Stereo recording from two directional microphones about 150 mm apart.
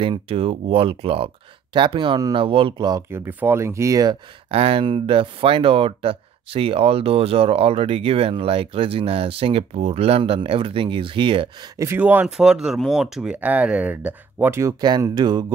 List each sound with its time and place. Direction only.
0.0 s speech: 35° right (ahead or behind)
3.1 s speech: 15° right (ahead or behind)
4.5 s speech: 40° right (ahead or behind)
11.8 s speech: 15° right (ahead or behind)